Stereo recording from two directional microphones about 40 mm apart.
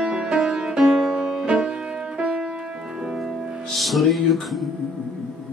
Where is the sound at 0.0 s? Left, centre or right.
Right.